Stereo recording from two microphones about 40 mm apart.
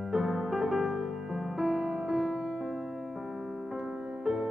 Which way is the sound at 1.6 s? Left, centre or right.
Centre.